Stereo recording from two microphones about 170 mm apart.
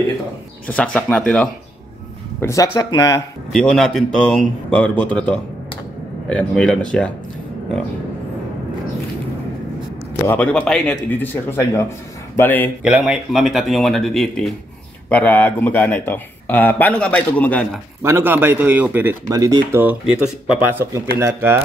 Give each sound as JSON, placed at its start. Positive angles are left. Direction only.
{"t": 0.7, "sound": "a man's voice", "side_deg": 10}
{"t": 2.4, "sound": "speech", "side_deg": 20}
{"t": 3.5, "sound": "speech", "side_deg": 5}
{"t": 10.2, "sound": "a man's voice", "side_deg": 10}
{"t": 12.8, "sound": "a man's voice", "side_deg": -5}
{"t": 18.0, "sound": "speech", "side_deg": -15}